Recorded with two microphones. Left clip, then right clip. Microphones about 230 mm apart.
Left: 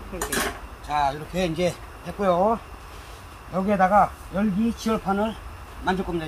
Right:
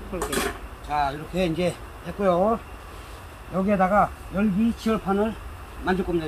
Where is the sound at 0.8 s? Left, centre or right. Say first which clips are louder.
Left 1 dB; centre.